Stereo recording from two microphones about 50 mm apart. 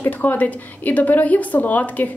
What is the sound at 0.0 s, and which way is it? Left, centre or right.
A woman's voice, left.